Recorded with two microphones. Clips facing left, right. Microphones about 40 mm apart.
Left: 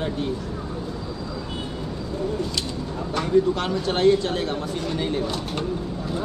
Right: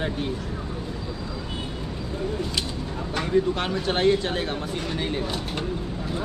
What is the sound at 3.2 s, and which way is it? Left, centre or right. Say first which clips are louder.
Speech: left 3 dB; centre.